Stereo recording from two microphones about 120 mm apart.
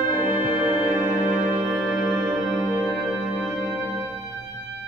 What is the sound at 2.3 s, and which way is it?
Music, 5° right (ahead or behind).